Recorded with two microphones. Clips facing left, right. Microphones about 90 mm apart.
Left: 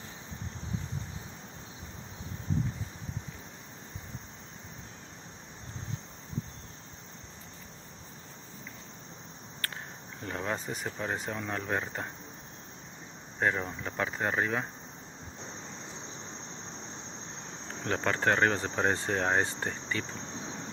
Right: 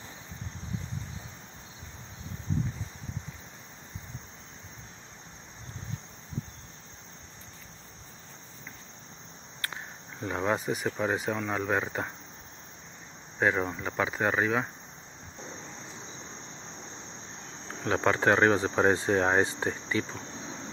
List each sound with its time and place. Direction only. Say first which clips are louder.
9.6 s cricket: right 2 dB; 15° right (ahead or behind)
10.2 s speech: right 6 dB; 15° right (ahead or behind)
13.4 s speech: right 3 dB; 5° right (ahead or behind)
17.8 s speech: right 4 dB; 10° right (ahead or behind)